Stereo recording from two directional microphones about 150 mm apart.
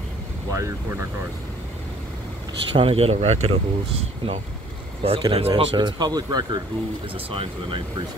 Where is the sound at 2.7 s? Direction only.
40° right (ahead or behind).